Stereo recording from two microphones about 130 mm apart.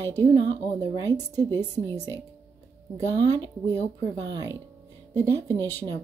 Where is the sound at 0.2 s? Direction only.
30° right (ahead or behind).